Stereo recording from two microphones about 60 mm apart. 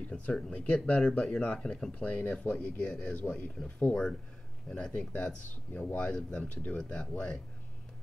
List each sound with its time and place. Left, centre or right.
0.1 s speech: centre